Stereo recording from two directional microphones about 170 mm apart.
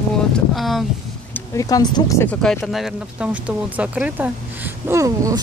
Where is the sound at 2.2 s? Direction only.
Centre (ahead or behind).